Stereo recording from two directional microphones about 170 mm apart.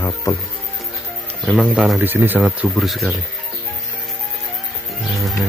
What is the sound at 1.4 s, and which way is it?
Speech, centre (ahead or behind).